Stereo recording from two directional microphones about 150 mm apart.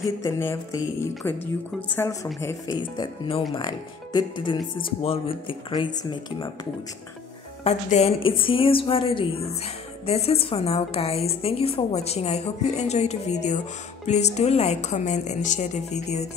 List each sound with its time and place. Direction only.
0.2 s a woman's voice: 20° left (ahead or behind)
2.8 s speech: 35° left (ahead or behind)
7.6 s a woman's voice: 45° left (ahead or behind)